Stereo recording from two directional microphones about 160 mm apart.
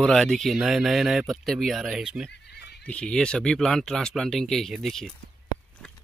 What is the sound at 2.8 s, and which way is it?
Speech, 5° left (ahead or behind).